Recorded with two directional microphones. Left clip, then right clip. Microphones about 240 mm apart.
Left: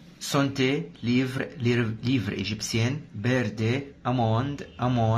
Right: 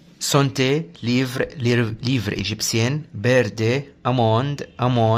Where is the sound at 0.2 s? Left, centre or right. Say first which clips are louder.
Right 6 dB; right.